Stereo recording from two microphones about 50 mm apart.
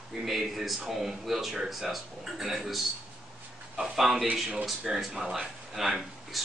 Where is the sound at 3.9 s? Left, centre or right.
Centre.